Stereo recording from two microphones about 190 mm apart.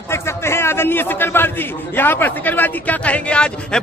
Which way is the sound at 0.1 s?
15° left (ahead or behind).